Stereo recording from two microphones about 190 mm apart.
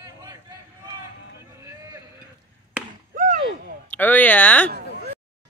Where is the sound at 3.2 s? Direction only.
40° right (ahead or behind).